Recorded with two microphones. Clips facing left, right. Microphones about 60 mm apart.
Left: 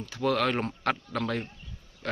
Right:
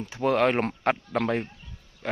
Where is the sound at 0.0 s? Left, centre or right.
Right.